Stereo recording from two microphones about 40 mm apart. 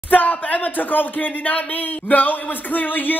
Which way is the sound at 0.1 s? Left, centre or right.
Left.